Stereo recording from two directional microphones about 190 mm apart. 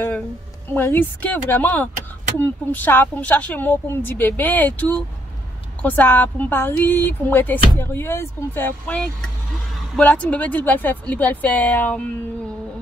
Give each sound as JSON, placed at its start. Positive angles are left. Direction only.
{"t": 0.7, "sound": "speech", "side_deg": 10}